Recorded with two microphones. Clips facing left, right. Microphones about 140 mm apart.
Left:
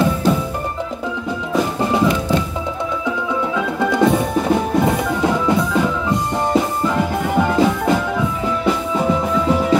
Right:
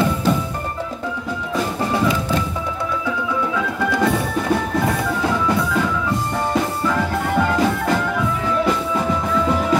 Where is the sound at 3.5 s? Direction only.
20° left (ahead or behind).